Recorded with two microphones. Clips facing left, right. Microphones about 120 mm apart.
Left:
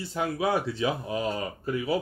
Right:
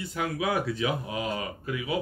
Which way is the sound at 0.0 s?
30° left (ahead or behind).